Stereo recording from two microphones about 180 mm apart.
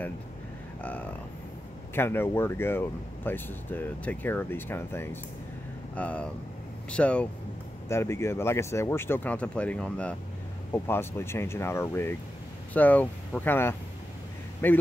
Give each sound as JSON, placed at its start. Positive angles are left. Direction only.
{"t": 0.7, "sound": "speech", "side_deg": 10}